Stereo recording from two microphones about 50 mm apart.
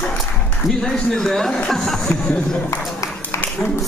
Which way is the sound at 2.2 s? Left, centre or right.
Centre.